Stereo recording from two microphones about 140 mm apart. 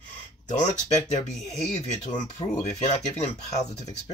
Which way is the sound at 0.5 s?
60° left (ahead or behind).